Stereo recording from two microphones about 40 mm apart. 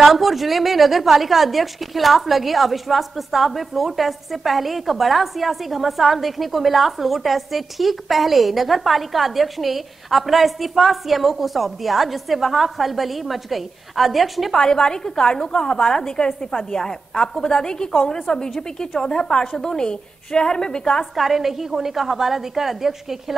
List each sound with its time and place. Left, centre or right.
0.0 s a woman's voice: centre
14.5 s a woman's voice: centre
21.0 s a woman's voice: centre